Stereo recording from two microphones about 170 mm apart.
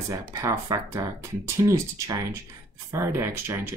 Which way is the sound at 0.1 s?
20° right (ahead or behind).